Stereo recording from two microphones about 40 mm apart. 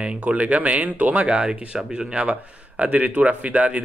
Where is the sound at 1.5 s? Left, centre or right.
Centre.